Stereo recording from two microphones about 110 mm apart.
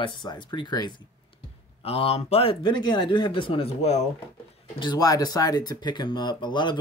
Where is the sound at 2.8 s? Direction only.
40° left (ahead or behind).